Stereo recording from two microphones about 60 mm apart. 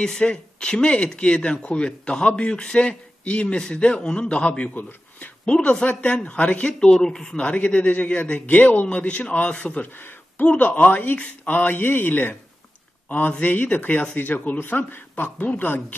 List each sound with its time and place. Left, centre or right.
0.0 s speech: centre
7.4 s a man's voice: left
13.4 s a man's voice: left